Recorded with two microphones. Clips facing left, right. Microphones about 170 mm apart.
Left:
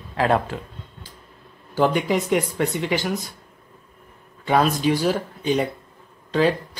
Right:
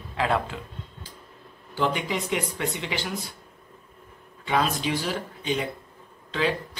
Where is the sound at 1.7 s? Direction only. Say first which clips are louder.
Left 7 dB; 50° left (ahead or behind).